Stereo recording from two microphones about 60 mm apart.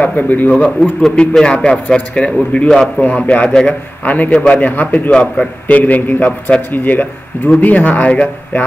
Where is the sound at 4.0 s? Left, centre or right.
Left.